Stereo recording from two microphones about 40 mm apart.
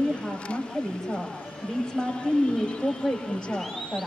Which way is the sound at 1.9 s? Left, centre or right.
Left.